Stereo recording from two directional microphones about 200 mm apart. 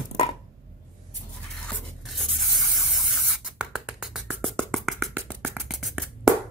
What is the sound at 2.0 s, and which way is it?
Spray, centre (ahead or behind).